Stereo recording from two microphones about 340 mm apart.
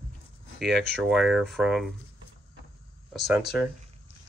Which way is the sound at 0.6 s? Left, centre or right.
Centre.